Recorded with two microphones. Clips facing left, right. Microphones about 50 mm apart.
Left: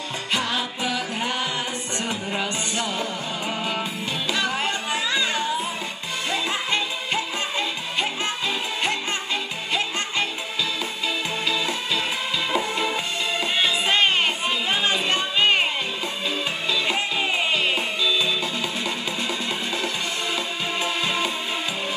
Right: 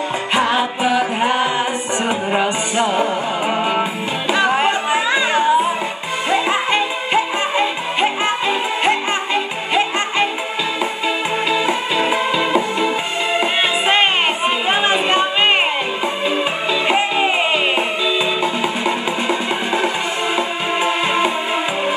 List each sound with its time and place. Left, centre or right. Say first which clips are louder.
0.3 s music: right 8 dB; right
11.4 s music: right 8 dB; right
16.8 s music: right 11 dB; right